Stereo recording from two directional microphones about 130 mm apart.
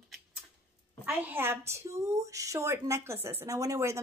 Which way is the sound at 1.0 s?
15° right (ahead or behind).